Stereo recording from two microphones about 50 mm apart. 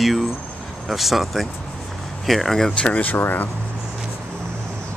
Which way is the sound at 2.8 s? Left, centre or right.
Left.